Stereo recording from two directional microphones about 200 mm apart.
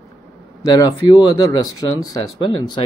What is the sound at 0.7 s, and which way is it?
Speech, 15° left (ahead or behind).